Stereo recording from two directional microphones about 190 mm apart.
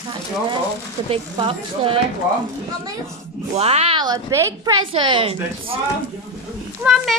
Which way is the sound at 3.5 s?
35° right (ahead or behind).